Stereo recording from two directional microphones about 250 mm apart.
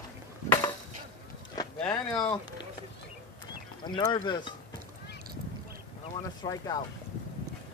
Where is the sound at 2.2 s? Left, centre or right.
Centre.